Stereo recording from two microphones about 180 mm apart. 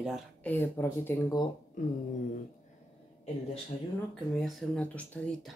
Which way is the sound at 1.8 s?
45° left (ahead or behind).